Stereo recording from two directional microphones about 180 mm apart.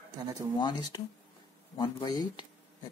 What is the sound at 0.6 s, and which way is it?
Speech, 25° left (ahead or behind).